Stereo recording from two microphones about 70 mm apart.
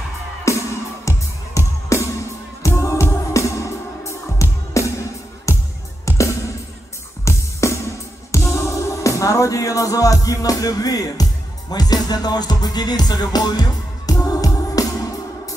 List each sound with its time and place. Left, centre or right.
0.5 s music: left